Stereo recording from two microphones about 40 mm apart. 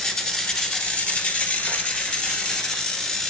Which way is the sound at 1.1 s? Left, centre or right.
Left.